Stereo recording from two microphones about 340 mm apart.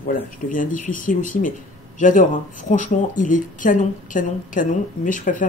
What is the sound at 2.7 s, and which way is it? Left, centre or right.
A woman's voice, left.